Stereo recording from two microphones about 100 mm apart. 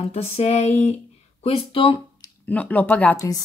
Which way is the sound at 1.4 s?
65° left (ahead or behind).